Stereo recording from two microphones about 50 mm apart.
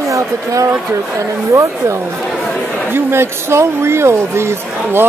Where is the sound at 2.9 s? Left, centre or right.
Right.